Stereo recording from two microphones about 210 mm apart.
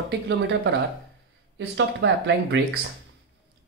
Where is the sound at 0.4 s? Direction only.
55° right (ahead or behind).